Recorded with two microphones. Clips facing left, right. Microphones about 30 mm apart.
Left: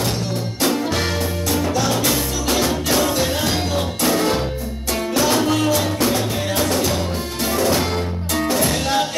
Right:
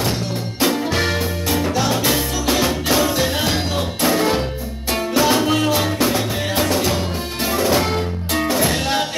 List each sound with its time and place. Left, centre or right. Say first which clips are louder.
0.6 s music: right 2 dB; centre